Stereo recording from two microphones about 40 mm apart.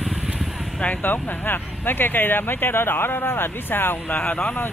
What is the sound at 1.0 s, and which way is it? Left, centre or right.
Speech, left.